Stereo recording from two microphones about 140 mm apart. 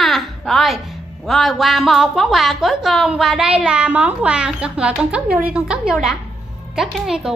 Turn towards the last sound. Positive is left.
turn(degrees=-5)  # may be behind; listen again after turning